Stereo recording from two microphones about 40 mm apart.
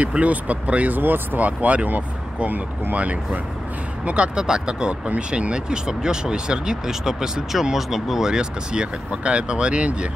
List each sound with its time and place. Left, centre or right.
0.1 s speech: right
0.9 s speech: right
1.4 s speech: right
4.4 s speech: right